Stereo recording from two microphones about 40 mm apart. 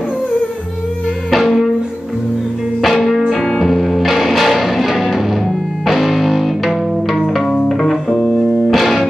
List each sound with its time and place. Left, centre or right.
1.3 s music: centre
2.8 s music: centre
7.6 s music: centre